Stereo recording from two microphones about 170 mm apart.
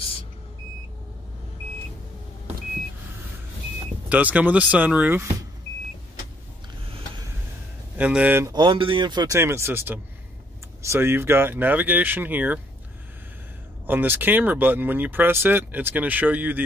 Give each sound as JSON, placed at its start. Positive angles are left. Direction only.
{"t": 4.1, "sound": "speech", "side_deg": -10}
{"t": 8.0, "sound": "speech", "side_deg": -10}
{"t": 8.5, "sound": "speech", "side_deg": -30}
{"t": 9.4, "sound": "speech", "side_deg": -15}
{"t": 13.8, "sound": "speech", "side_deg": -10}